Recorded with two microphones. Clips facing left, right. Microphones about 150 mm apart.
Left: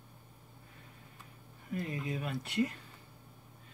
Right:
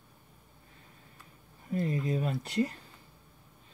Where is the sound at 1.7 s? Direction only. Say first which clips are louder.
Right 6 dB; 35° right (ahead or behind).